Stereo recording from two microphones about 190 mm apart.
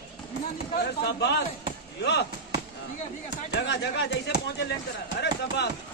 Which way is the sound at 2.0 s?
60° left (ahead or behind).